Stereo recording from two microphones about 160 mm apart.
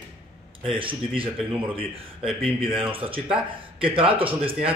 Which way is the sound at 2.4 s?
35° right (ahead or behind).